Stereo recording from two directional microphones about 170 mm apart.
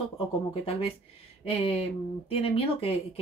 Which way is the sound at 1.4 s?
35° left (ahead or behind).